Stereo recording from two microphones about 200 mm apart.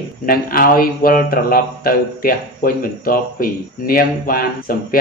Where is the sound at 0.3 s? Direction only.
45° left (ahead or behind).